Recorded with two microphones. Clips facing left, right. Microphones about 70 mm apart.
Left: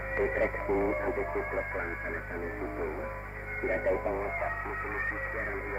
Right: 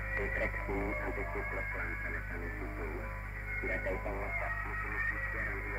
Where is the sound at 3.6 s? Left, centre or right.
Left.